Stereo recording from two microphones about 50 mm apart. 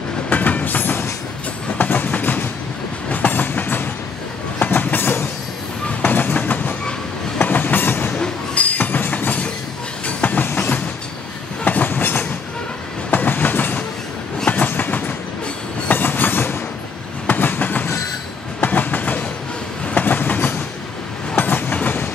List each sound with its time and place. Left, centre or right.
0.3 s train: left
8.5 s music: left
10.0 s train: left